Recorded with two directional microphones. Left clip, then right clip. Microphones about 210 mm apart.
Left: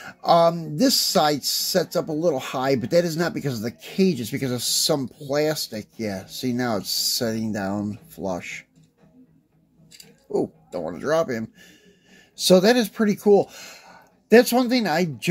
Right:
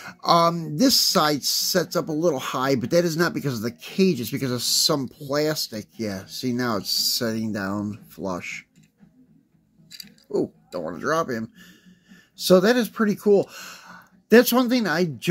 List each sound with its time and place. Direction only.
0.0 s speech: 15° right (ahead or behind)
9.8 s a sound: 10° right (ahead or behind)
12.4 s speech: 5° right (ahead or behind)